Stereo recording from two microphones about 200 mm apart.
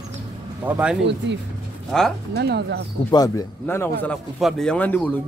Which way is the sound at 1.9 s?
Centre (ahead or behind).